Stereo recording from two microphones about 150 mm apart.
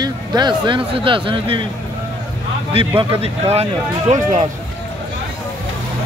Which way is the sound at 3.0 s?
40° right (ahead or behind).